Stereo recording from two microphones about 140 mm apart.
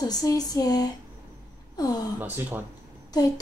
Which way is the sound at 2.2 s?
10° right (ahead or behind).